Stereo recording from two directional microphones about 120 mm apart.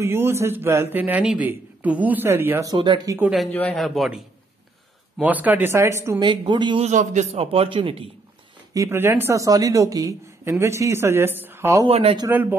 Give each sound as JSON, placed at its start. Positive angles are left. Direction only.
{"t": 0.0, "sound": "speech", "side_deg": -20}
{"t": 2.6, "sound": "speech", "side_deg": -35}
{"t": 3.7, "sound": "a man's voice", "side_deg": 0}
{"t": 5.2, "sound": "speech", "side_deg": -15}
{"t": 6.1, "sound": "speech", "side_deg": -40}
{"t": 6.8, "sound": "a man's voice", "side_deg": -80}
{"t": 7.3, "sound": "a man's voice", "side_deg": -50}
{"t": 8.7, "sound": "speech", "side_deg": -20}
{"t": 11.9, "sound": "a man's voice", "side_deg": -55}
{"t": 12.3, "sound": "speech", "side_deg": -15}